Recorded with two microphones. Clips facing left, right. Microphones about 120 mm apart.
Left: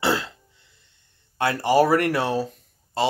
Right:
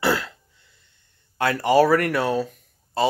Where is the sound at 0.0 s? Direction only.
25° left (ahead or behind).